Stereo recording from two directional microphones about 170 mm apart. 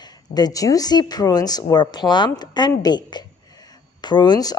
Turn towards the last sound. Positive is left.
turn(degrees=25)  # may be behind; listen again after turning